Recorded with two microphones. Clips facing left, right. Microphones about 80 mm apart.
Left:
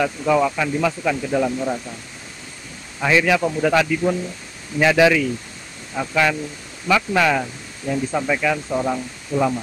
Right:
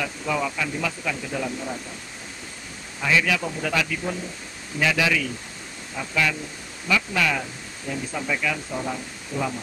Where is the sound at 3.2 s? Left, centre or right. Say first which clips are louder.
Left 7 dB; left.